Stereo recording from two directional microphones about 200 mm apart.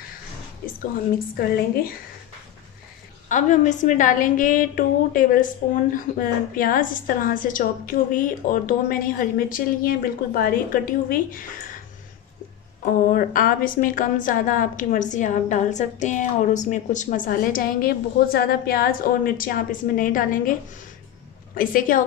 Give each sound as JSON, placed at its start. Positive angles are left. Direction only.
{"t": 1.3, "sound": "a woman's voice", "side_deg": 50}
{"t": 3.3, "sound": "a woman's voice", "side_deg": 40}
{"t": 12.8, "sound": "a woman's voice", "side_deg": 45}
{"t": 21.5, "sound": "a woman's voice", "side_deg": 45}